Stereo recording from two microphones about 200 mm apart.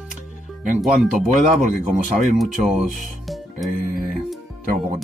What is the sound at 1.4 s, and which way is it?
Speech, 35° right (ahead or behind).